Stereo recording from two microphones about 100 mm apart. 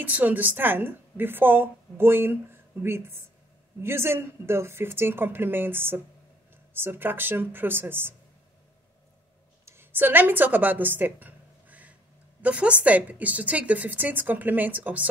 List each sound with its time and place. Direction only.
0.0 s a woman's voice: 15° right (ahead or behind)
9.7 s a sound: 20° right (ahead or behind)
12.4 s a woman's voice: 15° right (ahead or behind)